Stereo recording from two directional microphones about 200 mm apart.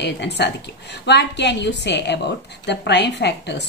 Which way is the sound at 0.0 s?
60° left (ahead or behind).